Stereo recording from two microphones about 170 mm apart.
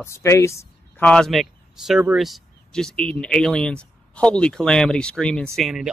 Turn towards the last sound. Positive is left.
turn(degrees=-5)  # may be behind; listen again after turning